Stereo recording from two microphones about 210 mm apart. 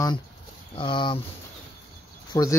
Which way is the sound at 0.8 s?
25° left (ahead or behind).